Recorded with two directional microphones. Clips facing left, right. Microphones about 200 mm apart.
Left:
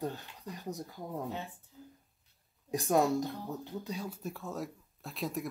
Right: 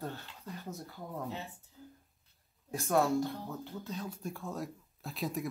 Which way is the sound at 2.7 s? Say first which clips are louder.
Left 1 dB; 15° left (ahead or behind).